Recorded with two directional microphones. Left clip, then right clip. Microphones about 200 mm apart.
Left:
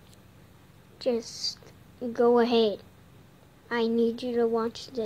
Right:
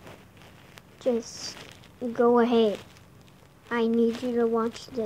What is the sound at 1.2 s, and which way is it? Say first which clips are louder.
Speech: left 4 dB; 20° left (ahead or behind).